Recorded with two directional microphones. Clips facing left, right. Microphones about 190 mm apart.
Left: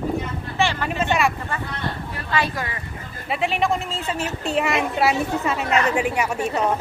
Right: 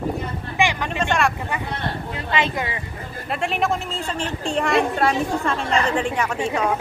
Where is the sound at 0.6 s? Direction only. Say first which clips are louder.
Right 1 dB; 15° right (ahead or behind).